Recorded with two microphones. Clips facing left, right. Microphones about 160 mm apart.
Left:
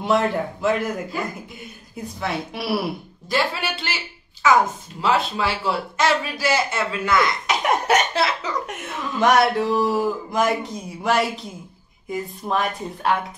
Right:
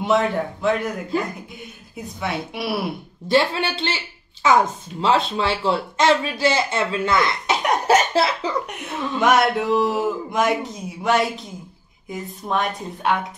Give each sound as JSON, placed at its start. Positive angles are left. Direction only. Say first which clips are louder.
{"t": 0.0, "sound": "a man's voice", "louder": "right 1 dB", "side_deg": 0}
{"t": 3.3, "sound": "a woman's voice", "louder": "right 4 dB", "side_deg": -25}
{"t": 7.5, "sound": "cough", "louder": "right 3 dB", "side_deg": -30}
{"t": 8.6, "sound": "a man's voice", "louder": "right 2 dB", "side_deg": 0}